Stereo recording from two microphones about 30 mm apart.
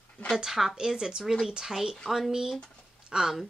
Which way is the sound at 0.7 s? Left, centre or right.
Right.